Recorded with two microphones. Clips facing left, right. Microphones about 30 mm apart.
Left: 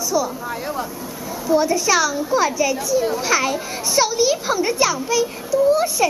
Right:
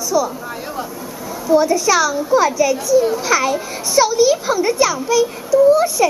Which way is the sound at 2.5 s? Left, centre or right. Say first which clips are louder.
Right 5 dB; left.